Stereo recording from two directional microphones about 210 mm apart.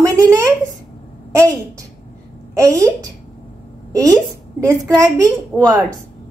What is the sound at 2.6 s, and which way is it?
A woman's voice, 15° right (ahead or behind).